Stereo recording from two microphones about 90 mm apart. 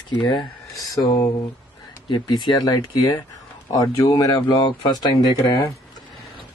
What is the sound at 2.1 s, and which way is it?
Speech, 50° left (ahead or behind).